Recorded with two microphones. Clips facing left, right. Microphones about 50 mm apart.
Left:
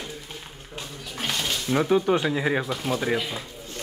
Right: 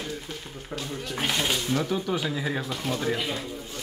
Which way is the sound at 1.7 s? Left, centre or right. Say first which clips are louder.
Left 6 dB; left.